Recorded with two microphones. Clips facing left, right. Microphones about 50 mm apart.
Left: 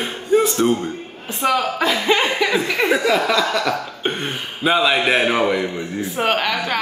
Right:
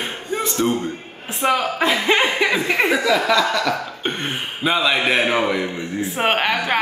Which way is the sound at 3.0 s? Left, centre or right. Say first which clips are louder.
Even; centre.